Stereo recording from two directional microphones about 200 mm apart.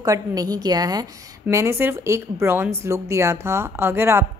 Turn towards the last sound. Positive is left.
turn(degrees=-10)  # may be behind; listen again after turning